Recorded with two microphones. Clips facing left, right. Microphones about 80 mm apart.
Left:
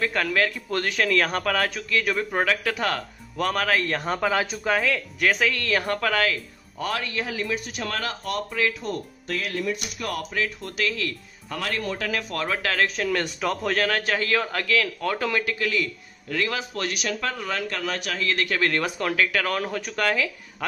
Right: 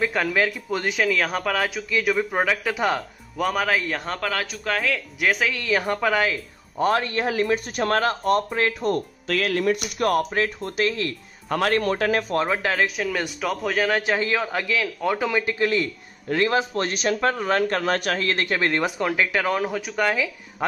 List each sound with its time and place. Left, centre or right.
0.0 s a man's voice: centre
6.8 s speech: right
9.3 s speech: right
11.4 s speech: right
12.4 s speech: centre
13.8 s speech: centre
15.4 s speech: right; by 20.6 s centre